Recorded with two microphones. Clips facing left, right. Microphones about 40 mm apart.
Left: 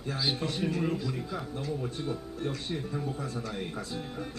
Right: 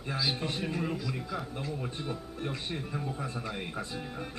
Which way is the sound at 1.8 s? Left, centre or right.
Right.